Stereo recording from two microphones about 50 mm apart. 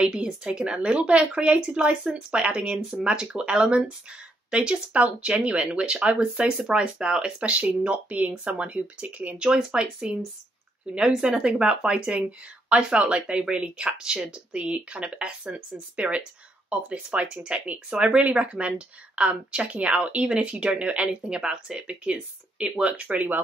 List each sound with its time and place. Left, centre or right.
0.0 s a woman's voice: centre
14.6 s speech: right
20.2 s a woman's voice: centre
23.0 s speech: right